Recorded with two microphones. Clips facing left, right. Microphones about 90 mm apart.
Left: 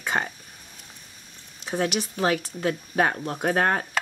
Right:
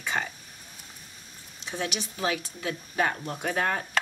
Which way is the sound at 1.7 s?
45° left (ahead or behind).